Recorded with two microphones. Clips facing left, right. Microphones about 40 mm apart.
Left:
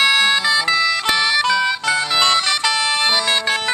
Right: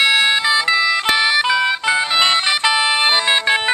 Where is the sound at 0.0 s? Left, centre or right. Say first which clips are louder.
Right 1 dB; centre.